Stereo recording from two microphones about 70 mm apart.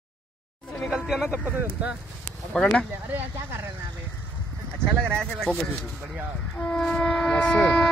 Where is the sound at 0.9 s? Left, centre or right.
Centre.